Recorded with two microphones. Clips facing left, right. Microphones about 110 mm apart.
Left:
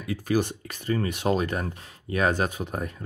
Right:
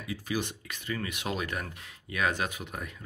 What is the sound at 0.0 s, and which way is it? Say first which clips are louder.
Speech: left 8 dB; 50° left (ahead or behind).